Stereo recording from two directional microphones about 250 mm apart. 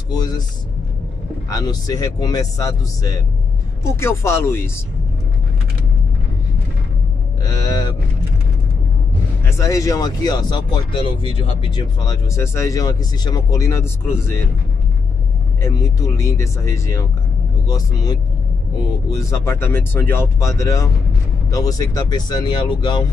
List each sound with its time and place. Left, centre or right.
0.1 s speech: centre
1.5 s speech: centre
7.4 s speech: centre
9.4 s speech: centre
15.6 s speech: centre